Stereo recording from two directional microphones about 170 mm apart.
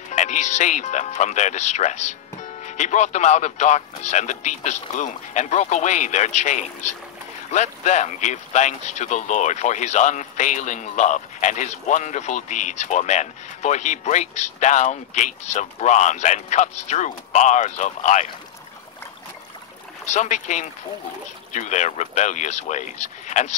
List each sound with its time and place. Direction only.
0.1 s speech: 45° left (ahead or behind)
20.1 s speech: 45° left (ahead or behind)